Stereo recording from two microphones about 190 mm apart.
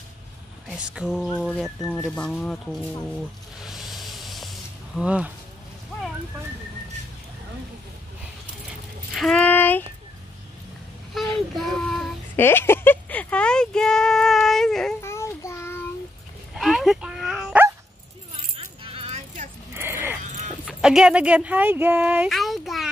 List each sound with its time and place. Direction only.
0.7 s a sound: 5° right (ahead or behind)
9.1 s speech: 5° left (ahead or behind)
11.1 s child singing: centre (ahead or behind)
11.5 s speech: centre (ahead or behind)
15.0 s child singing: 15° left (ahead or behind)
16.5 s dog: centre (ahead or behind)
18.3 s keys jangling: 30° right (ahead or behind)
19.7 s a sound: 10° right (ahead or behind)
20.8 s speech: 5° right (ahead or behind)